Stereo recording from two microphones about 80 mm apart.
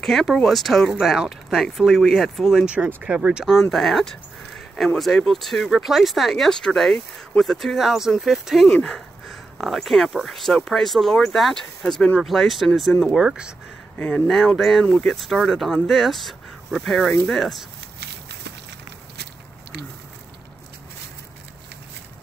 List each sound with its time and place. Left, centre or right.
0.0 s speech: centre
3.7 s speech: centre
13.9 s speech: centre
14.3 s speech: centre